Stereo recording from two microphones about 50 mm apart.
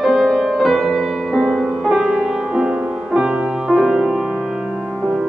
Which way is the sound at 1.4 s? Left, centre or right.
Centre.